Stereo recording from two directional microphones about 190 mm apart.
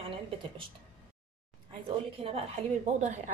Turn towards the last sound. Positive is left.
turn(degrees=-35)  # may be behind; listen again after turning